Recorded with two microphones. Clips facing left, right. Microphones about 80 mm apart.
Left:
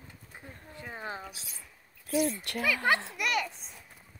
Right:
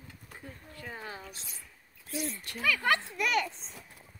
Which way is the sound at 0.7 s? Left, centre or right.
Left.